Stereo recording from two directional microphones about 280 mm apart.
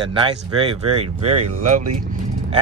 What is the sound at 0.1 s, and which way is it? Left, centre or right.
Speech, centre.